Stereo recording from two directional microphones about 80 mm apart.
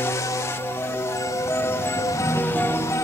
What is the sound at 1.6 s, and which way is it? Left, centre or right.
Music, left.